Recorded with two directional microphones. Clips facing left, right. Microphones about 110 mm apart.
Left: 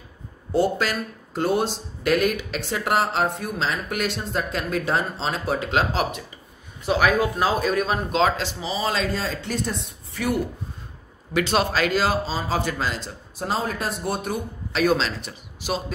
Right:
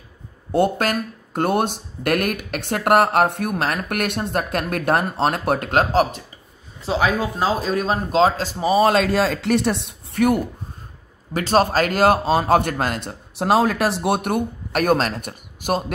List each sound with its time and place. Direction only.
0.5 s speech: 55° right (ahead or behind)
6.9 s speech: 25° right (ahead or behind); by 10.4 s 55° right (ahead or behind)
11.3 s speech: 40° right (ahead or behind)